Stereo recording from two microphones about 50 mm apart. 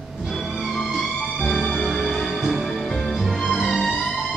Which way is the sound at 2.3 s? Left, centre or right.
Centre.